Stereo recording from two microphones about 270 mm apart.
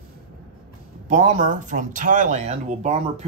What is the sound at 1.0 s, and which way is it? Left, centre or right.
Speech, right.